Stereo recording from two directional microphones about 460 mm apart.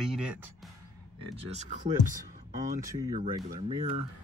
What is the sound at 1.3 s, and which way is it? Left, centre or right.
Speech, centre.